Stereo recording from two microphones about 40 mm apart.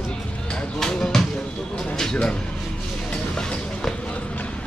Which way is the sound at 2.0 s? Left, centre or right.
Centre.